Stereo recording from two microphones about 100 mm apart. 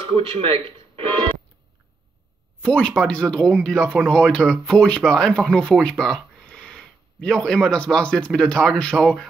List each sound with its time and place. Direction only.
0.0 s speech: 65° right (ahead or behind)
2.6 s speech: 10° left (ahead or behind)